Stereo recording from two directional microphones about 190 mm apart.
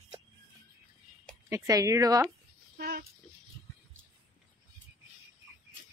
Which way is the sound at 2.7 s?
50° right (ahead or behind).